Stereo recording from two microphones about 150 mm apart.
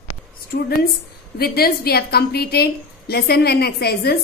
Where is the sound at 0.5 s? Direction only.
80° left.